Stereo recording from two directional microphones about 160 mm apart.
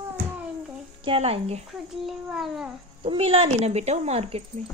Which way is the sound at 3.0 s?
35° right (ahead or behind).